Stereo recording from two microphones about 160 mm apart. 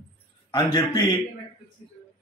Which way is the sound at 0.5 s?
25° left (ahead or behind).